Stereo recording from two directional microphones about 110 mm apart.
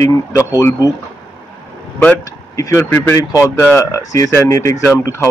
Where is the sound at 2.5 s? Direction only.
30° left (ahead or behind).